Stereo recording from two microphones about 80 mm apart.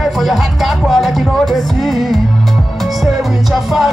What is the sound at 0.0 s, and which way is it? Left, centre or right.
Music, centre.